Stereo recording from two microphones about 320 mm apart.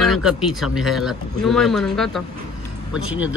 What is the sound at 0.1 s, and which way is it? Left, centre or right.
Speech, left.